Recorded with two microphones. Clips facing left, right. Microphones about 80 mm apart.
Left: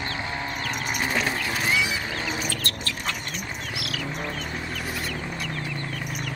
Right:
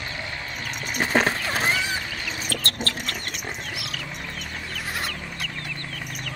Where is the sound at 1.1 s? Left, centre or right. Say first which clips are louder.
Right 7 dB; right.